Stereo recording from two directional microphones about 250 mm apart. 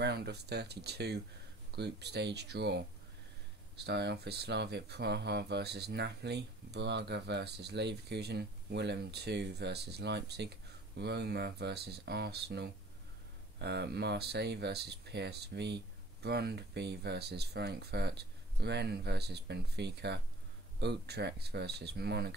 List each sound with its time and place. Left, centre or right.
0.0 s speech: right